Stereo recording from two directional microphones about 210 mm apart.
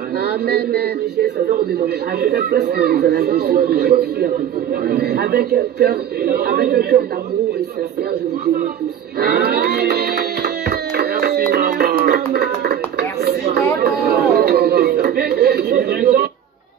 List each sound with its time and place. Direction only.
0.5 s a man's voice: 50° right (ahead or behind)
9.2 s music: 50° right (ahead or behind)
13.2 s chatter: 50° right (ahead or behind)
13.7 s a sound: 45° right (ahead or behind)